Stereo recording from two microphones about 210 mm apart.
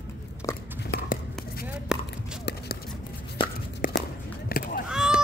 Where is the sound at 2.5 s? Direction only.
55° left (ahead or behind).